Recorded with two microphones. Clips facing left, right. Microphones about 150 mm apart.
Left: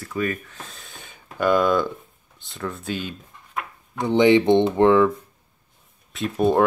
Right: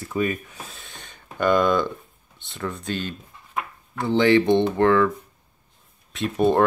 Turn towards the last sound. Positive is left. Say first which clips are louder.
# even
turn(degrees=0)  # may be behind; listen again after turning